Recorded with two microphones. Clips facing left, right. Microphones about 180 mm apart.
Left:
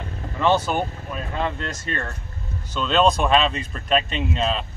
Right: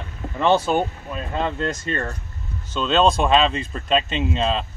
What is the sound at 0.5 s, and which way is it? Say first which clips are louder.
Speech: right 2 dB; 25° right (ahead or behind).